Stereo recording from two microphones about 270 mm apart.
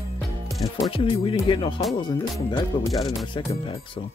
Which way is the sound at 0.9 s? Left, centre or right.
Centre.